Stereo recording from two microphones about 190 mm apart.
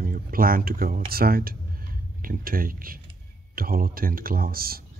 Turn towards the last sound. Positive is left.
turn(degrees=-50)  # may be behind; listen again after turning